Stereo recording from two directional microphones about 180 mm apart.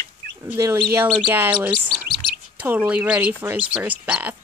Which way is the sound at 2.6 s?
10° right (ahead or behind).